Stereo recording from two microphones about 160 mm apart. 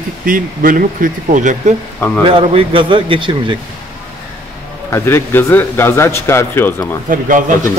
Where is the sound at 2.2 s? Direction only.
35° right (ahead or behind).